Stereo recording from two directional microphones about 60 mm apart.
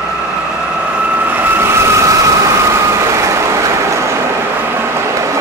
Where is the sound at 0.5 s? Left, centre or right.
Centre; by 4.5 s right.